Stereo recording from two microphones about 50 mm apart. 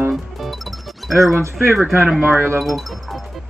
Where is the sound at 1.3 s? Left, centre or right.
Right.